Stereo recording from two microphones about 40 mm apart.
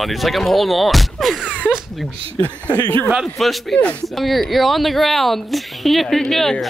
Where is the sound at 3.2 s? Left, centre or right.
Centre.